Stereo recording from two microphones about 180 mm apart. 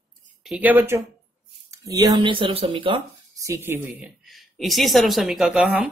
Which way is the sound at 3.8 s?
5° right (ahead or behind).